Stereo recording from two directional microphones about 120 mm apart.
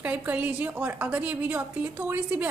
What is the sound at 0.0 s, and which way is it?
A woman's voice, 15° right (ahead or behind).